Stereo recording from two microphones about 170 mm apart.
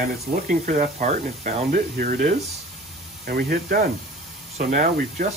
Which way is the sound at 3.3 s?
60° right (ahead or behind).